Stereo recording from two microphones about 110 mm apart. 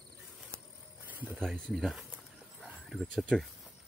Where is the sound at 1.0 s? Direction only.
15° right (ahead or behind).